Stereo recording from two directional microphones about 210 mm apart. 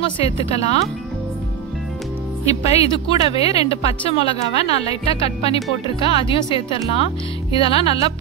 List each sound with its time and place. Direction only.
0.2 s speech: 30° left (ahead or behind)
2.4 s speech: 30° left (ahead or behind)